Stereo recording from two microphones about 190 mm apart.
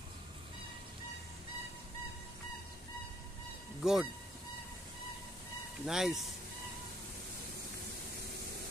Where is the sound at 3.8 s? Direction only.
Centre (ahead or behind).